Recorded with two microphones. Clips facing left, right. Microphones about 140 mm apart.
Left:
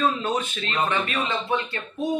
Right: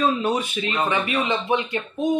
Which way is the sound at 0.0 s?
10° right (ahead or behind).